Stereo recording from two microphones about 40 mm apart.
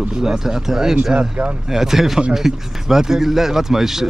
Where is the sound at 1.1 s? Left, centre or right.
Right.